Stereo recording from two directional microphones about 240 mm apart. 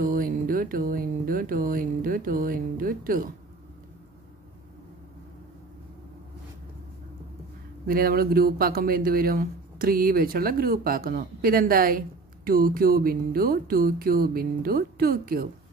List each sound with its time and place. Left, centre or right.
0.0 s speech: right
7.8 s speech: right